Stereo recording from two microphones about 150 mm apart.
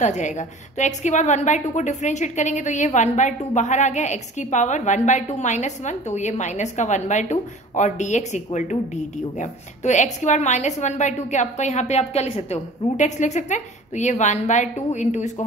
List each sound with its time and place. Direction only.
0.0 s a woman's voice: 55° left (ahead or behind)